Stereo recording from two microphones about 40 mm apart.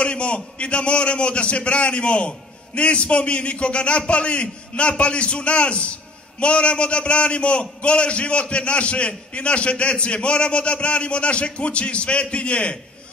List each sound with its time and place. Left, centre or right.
0.0 s a man's voice: left